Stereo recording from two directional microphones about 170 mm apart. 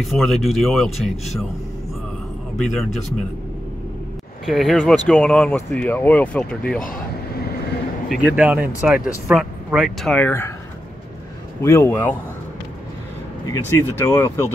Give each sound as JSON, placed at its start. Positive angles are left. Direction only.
{"t": 0.0, "sound": "speech", "side_deg": 0}
{"t": 2.5, "sound": "speech", "side_deg": 0}
{"t": 4.5, "sound": "speech", "side_deg": 0}
{"t": 6.8, "sound": "vehicle", "side_deg": 55}
{"t": 8.4, "sound": "speech", "side_deg": -10}
{"t": 11.6, "sound": "speech", "side_deg": 15}
{"t": 13.5, "sound": "speech", "side_deg": 15}